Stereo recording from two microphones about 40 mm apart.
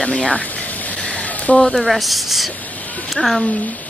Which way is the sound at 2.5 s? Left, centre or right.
Left.